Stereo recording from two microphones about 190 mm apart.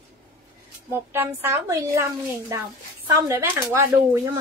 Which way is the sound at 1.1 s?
10° right (ahead or behind).